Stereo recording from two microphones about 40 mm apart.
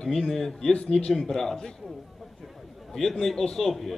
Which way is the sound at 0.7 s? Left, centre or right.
Left.